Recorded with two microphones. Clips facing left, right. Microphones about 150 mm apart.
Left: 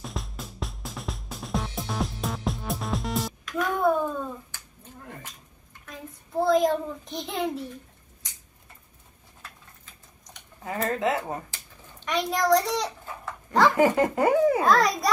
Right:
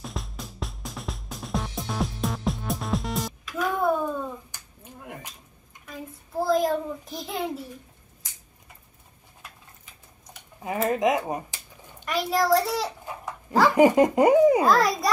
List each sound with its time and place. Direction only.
0.0 s music: centre (ahead or behind)
5.0 s cat: 15° right (ahead or behind)
5.9 s child singing: 5° right (ahead or behind)
10.9 s a sound: 15° right (ahead or behind)
12.1 s a child's voice: 5° right (ahead or behind)
13.0 s speech: 15° right (ahead or behind)
14.6 s a child's voice: centre (ahead or behind)